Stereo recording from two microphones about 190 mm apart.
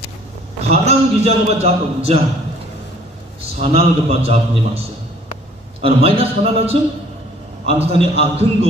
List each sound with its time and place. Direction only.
0.6 s a man's voice: 35° right (ahead or behind)
3.5 s a man's voice: 30° right (ahead or behind)